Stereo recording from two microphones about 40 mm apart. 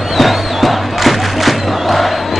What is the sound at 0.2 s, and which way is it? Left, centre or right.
Music, centre.